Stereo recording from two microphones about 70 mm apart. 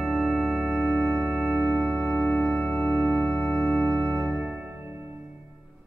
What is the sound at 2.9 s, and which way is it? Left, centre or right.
Organ, centre.